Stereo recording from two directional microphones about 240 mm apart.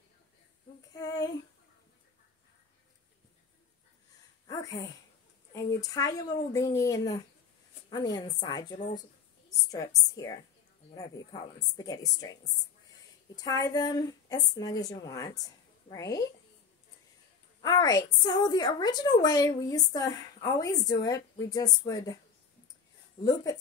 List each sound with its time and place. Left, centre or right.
0.9 s child singing: centre
4.5 s a sound: centre
5.5 s a woman's voice: centre
13.4 s a woman's voice: centre
17.6 s a woman's voice: centre
23.2 s a woman's voice: centre